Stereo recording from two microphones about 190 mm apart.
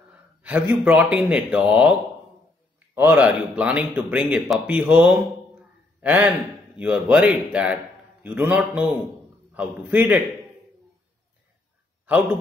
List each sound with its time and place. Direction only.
0.1 s a man's voice: 5° right (ahead or behind)